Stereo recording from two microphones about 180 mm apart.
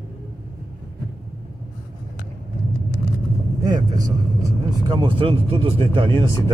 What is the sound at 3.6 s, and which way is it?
Vehicle, 20° right (ahead or behind).